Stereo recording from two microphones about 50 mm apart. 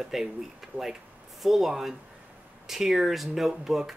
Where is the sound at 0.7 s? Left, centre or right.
Right.